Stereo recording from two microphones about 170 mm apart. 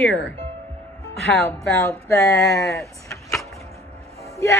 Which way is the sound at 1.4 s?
15° left (ahead or behind).